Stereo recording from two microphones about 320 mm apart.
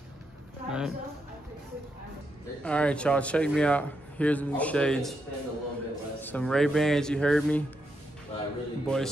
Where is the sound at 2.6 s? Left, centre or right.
Centre.